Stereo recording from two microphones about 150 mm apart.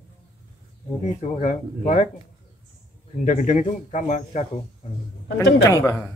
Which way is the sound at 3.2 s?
55° left (ahead or behind).